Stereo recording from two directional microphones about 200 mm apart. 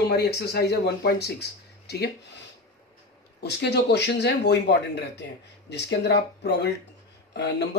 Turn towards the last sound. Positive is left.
turn(degrees=60)  # may be behind; listen again after turning